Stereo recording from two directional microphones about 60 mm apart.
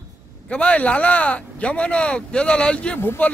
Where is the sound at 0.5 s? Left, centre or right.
Centre.